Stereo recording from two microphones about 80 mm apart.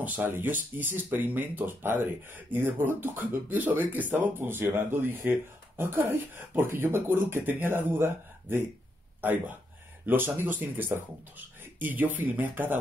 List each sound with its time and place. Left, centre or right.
0.0 s speech: right